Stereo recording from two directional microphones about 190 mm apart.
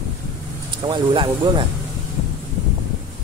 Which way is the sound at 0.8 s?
25° right (ahead or behind).